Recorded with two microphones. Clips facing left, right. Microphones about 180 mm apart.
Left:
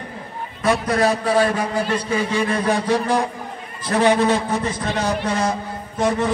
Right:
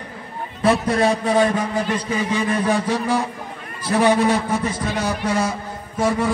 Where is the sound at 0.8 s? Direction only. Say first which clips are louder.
Even; 25° right (ahead or behind).